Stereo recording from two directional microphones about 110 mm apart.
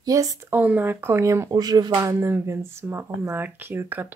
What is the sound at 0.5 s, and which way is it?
Speech, 15° right (ahead or behind).